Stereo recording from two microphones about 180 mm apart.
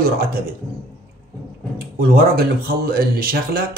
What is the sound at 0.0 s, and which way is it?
Speech, 55° right (ahead or behind).